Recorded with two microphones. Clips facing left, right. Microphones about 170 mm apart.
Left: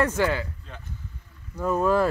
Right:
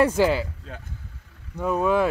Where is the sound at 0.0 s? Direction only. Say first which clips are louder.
Right 4 dB; 15° right (ahead or behind).